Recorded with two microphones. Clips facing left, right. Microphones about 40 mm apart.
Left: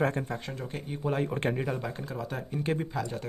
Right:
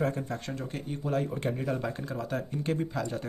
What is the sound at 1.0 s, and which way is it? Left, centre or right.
Speech, left.